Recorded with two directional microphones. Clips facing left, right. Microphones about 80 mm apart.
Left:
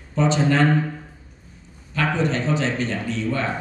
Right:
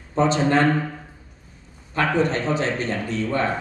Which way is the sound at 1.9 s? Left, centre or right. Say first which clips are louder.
Right 2 dB; right.